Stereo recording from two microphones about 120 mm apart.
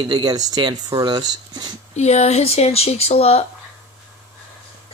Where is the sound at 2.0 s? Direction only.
65° left (ahead or behind).